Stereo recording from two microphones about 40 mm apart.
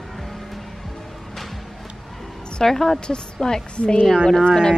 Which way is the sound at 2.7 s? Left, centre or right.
Centre.